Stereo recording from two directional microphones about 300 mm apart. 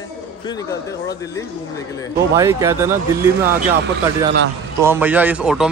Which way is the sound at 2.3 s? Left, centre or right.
Centre.